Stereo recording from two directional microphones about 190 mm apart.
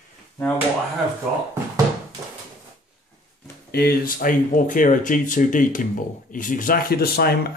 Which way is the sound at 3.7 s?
55° left (ahead or behind).